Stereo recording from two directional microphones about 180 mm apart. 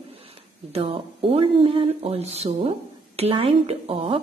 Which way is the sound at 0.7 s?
30° right (ahead or behind).